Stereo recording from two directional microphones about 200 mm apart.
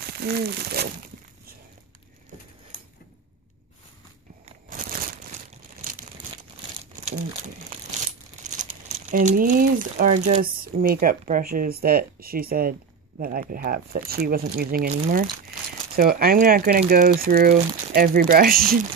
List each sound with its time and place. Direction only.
0.0 s speech: 50° right (ahead or behind)
4.5 s a sound: 40° right (ahead or behind)
5.8 s crumpling: 45° right (ahead or behind)
8.5 s speech: 40° right (ahead or behind)